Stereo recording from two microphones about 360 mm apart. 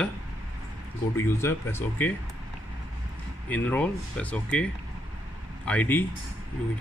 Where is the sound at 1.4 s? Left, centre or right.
Centre.